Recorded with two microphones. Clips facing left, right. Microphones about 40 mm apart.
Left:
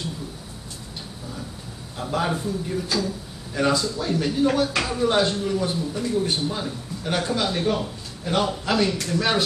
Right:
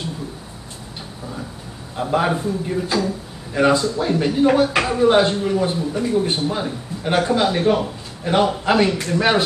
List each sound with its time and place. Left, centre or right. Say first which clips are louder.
2.0 s speech: right 6 dB; right